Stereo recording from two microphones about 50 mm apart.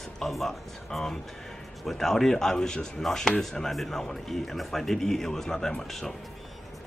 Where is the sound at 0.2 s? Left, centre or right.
Centre.